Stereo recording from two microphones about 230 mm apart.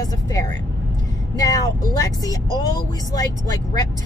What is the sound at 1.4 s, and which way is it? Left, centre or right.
Speech, centre.